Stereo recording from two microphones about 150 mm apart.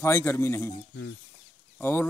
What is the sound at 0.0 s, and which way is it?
Speech, 15° left (ahead or behind).